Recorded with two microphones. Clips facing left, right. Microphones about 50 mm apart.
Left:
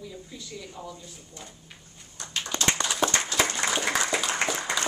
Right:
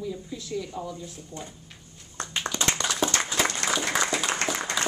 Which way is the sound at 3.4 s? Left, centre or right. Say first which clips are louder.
Even; centre.